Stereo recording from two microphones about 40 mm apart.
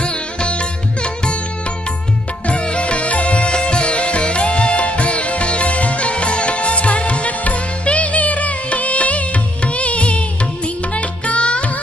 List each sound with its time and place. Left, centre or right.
0.0 s sitar: left
2.4 s music: left